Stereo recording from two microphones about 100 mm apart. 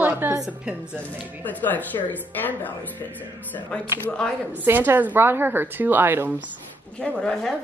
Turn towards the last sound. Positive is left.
turn(degrees=5)  # may be behind; listen again after turning